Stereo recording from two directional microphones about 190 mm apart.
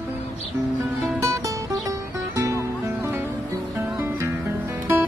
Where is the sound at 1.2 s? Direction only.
15° right (ahead or behind).